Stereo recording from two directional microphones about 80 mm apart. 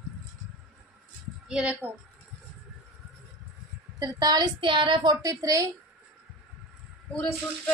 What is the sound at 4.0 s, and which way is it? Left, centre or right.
A woman's voice, right.